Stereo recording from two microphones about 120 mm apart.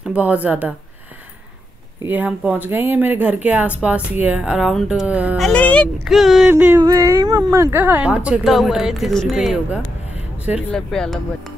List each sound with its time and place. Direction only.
0.0 s speech: 10° right (ahead or behind)
2.0 s speech: 15° right (ahead or behind)
5.4 s speech: 10° left (ahead or behind)
6.0 s speech: centre (ahead or behind)
6.5 s a sound: 20° right (ahead or behind)
6.8 s speech: 30° right (ahead or behind); by 11.1 s 5° left (ahead or behind)